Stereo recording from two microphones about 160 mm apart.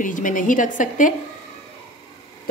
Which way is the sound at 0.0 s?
55° left (ahead or behind).